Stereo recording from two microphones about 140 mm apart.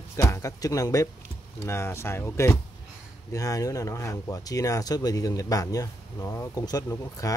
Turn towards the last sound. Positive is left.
turn(degrees=25)  # may be behind; listen again after turning